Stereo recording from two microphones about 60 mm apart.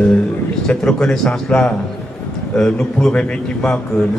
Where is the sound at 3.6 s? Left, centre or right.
Centre.